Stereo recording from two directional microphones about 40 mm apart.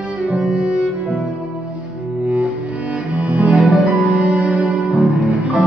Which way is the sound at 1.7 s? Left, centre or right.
Right.